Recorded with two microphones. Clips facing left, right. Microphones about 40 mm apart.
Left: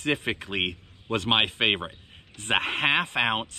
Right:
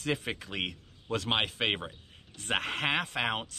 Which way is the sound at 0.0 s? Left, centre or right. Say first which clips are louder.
Left 6 dB; left.